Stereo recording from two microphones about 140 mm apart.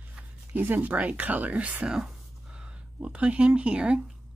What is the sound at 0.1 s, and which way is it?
Speech, 10° right (ahead or behind).